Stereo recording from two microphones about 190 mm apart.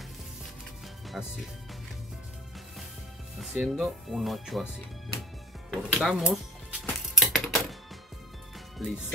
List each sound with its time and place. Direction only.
1.1 s speech: centre (ahead or behind)
3.3 s speech: centre (ahead or behind)
5.7 s music: centre (ahead or behind)
8.8 s speech: centre (ahead or behind)